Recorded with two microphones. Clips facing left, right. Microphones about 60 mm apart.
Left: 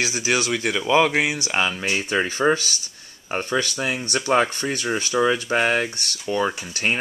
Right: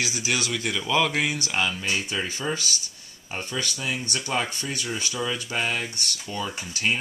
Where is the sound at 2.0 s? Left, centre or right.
Left.